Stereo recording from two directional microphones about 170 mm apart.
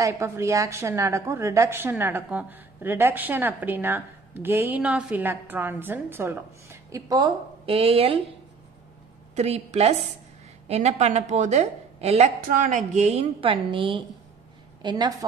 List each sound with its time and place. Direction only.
0.0 s a woman's voice: 20° right (ahead or behind); by 8.2 s 35° right (ahead or behind)
9.3 s a woman's voice: 40° right (ahead or behind)
12.4 s a woman's voice: 55° right (ahead or behind); by 15.2 s 25° right (ahead or behind)